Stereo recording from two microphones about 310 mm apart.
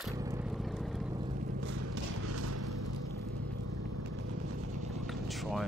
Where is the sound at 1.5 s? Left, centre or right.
Right.